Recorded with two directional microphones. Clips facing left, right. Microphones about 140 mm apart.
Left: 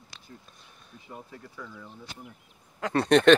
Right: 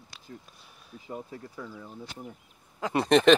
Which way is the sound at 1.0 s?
30° right (ahead or behind).